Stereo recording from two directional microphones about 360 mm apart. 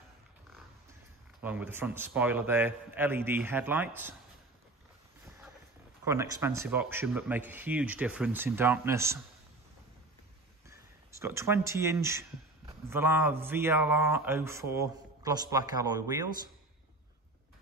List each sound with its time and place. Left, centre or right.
1.4 s a man's voice: centre
6.0 s a man's voice: centre
10.7 s speech: centre